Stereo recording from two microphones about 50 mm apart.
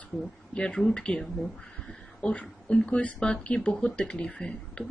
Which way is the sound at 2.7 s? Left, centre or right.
Left.